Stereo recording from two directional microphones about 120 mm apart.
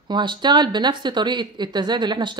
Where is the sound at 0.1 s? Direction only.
40° right (ahead or behind).